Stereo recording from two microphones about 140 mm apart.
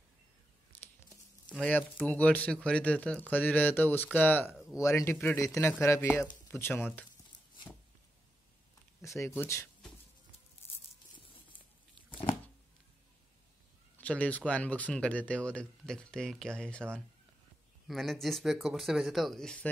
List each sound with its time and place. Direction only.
1.5 s speech: 10° left (ahead or behind)
9.0 s speech: 20° left (ahead or behind)
13.9 s speech: 10° left (ahead or behind)